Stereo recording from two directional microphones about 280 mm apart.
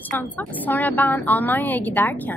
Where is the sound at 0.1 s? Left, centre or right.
Centre.